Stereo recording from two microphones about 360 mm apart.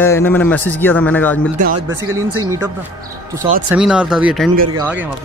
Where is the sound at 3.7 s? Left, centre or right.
Centre.